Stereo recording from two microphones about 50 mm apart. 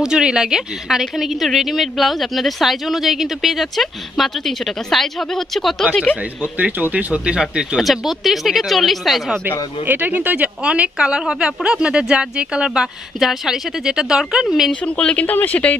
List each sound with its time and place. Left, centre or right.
0.0 s a woman's voice: centre
6.4 s speech: right
7.7 s a woman's voice: centre
9.8 s speech: right
10.6 s a woman's voice: right
14.9 s speech: left
15.2 s speech: left